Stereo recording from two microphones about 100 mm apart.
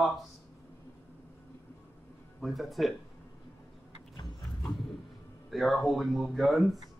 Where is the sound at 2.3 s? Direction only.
Centre (ahead or behind).